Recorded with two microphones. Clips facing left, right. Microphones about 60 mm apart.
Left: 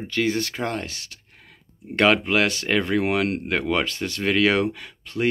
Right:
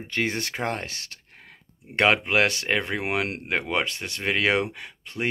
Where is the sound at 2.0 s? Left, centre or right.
Right.